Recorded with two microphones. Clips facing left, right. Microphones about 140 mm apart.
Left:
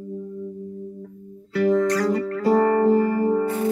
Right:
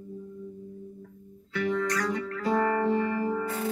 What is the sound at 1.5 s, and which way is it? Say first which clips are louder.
Music: left 9 dB; 35° left (ahead or behind).